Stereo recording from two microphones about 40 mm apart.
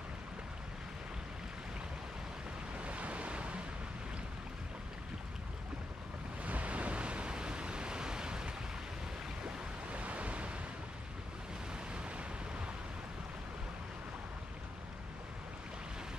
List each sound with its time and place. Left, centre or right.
2.8 s waves: right
6.4 s pink noise: right
9.4 s waves: right